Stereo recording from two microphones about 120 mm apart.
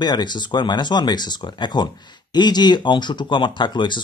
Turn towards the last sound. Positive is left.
turn(degrees=40)  # may be behind; listen again after turning